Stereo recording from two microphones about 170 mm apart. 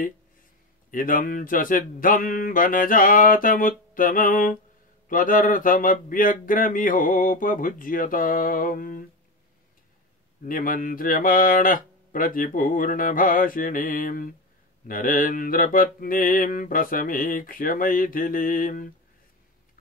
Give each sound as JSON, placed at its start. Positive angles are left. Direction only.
{"t": 0.9, "sound": "speech", "side_deg": 55}
{"t": 10.4, "sound": "mantra", "side_deg": 55}